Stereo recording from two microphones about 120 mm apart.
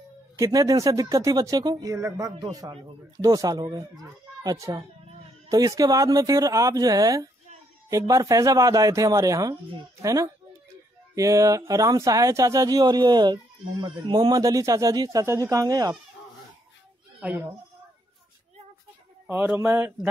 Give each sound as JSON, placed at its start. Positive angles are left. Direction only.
{"t": 0.4, "sound": "speech", "side_deg": -30}
{"t": 17.2, "sound": "speech", "side_deg": -10}
{"t": 19.2, "sound": "speech", "side_deg": -15}